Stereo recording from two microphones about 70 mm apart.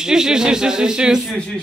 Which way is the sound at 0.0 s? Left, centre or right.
Centre.